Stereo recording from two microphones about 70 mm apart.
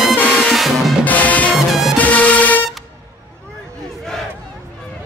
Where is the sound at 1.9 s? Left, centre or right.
Centre.